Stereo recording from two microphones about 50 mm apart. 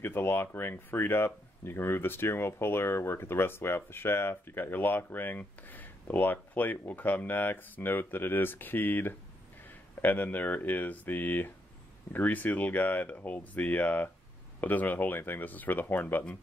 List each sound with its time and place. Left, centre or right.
0.0 s speech: left